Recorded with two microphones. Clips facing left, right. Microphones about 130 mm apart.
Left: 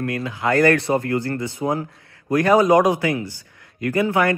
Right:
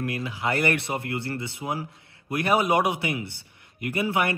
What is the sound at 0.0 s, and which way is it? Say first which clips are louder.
Speech: left 5 dB; 20° right (ahead or behind).